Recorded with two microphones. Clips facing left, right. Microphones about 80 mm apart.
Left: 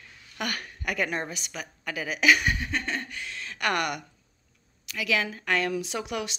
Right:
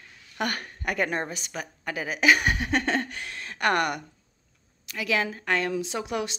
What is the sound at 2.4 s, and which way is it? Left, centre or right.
A woman's voice, right.